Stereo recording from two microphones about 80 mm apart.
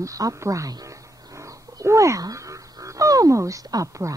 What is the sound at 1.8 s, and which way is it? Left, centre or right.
Speech, right.